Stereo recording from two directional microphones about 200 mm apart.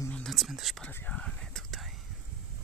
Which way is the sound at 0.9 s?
10° left (ahead or behind).